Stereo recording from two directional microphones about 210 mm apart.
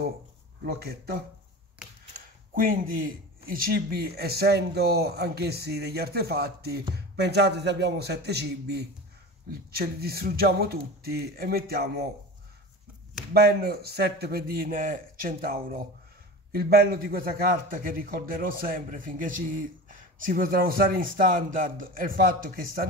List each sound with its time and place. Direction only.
0.7 s a man's voice: 45° right (ahead or behind)
13.3 s a man's voice: 50° right (ahead or behind)